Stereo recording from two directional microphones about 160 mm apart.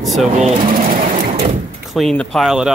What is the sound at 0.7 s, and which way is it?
Pigeon, 60° right (ahead or behind).